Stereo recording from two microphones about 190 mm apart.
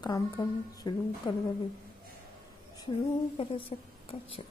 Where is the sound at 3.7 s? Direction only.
35° left (ahead or behind).